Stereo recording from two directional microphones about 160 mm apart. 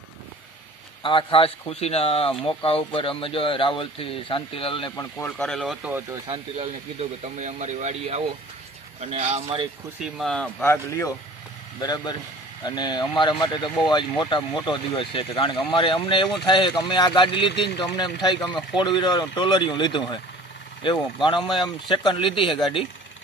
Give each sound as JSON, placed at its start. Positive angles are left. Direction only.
{"t": 1.0, "sound": "speech", "side_deg": 35}
{"t": 5.4, "sound": "speech", "side_deg": 5}
{"t": 5.8, "sound": "speech", "side_deg": -10}
{"t": 7.0, "sound": "speech", "side_deg": -45}
{"t": 10.0, "sound": "speech", "side_deg": 0}
{"t": 10.6, "sound": "speech", "side_deg": 15}